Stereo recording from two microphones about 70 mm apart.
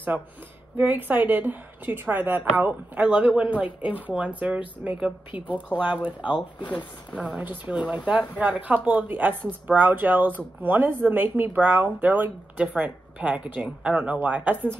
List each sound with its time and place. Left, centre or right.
0.7 s a woman's voice: right
6.6 s speech: left
7.2 s a woman's voice: centre